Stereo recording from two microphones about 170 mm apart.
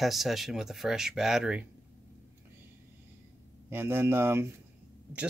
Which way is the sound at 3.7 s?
15° right (ahead or behind).